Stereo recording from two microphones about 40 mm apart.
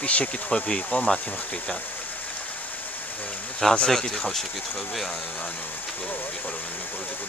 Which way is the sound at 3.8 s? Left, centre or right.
Centre.